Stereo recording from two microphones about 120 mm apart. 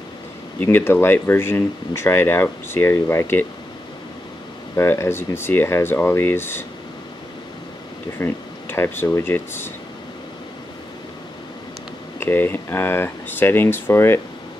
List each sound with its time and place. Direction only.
0.6 s speech: 15° left (ahead or behind)
4.7 s speech: 20° left (ahead or behind)
8.2 s speech: 20° left (ahead or behind)
12.2 s speech: 20° left (ahead or behind)